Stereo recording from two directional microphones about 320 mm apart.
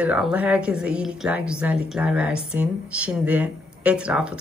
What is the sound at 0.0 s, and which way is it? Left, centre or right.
A woman's voice, centre.